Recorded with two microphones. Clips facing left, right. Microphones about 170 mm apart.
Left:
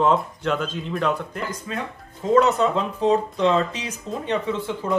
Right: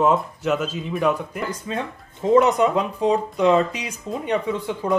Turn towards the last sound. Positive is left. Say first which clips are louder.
# right 1 dB
turn(degrees=-15)  # may be behind; listen again after turning